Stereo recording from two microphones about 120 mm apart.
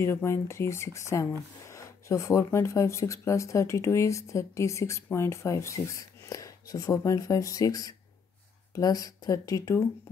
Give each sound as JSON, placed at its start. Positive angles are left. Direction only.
{"t": 0.0, "sound": "speech", "side_deg": 20}